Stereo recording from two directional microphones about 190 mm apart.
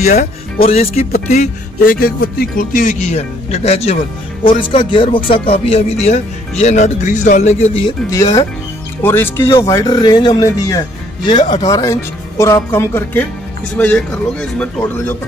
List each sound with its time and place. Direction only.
0.0 s speech: 35° left (ahead or behind)
9.0 s speech: 10° left (ahead or behind)